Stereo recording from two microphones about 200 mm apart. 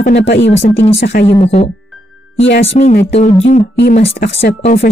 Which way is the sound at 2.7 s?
40° left (ahead or behind).